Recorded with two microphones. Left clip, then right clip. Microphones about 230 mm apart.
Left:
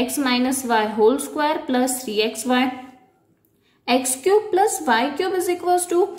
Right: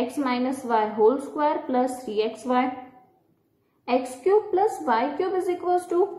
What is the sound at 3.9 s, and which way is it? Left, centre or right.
A woman's voice, left.